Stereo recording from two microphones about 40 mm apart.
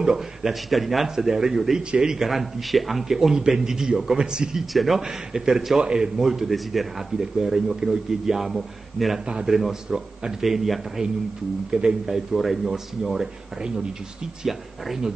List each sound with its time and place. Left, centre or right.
0.0 s speech: centre
2.2 s speech: centre
4.7 s speech: centre
5.0 s speech: centre
9.3 s a man's voice: right
11.7 s a man's voice: right
12.1 s speech: centre